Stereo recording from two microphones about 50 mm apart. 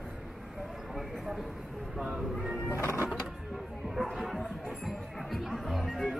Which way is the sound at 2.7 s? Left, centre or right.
Left.